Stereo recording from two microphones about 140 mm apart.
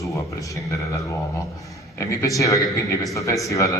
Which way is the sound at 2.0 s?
25° left (ahead or behind).